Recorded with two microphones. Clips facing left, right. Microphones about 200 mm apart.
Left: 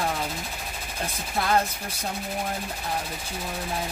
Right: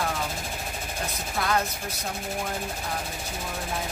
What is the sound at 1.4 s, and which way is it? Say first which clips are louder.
Speech: left 2 dB; 30° left (ahead or behind).